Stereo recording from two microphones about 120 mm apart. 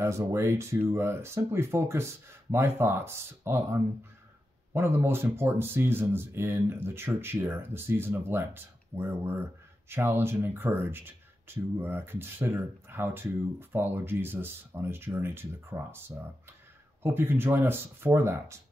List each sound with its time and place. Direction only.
0.0 s speech: 25° right (ahead or behind)
17.0 s speech: 20° right (ahead or behind)